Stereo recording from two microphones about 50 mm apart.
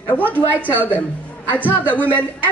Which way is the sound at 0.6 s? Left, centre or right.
Right.